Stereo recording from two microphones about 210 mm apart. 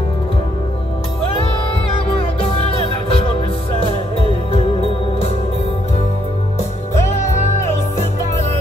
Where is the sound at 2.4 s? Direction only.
30° left (ahead or behind).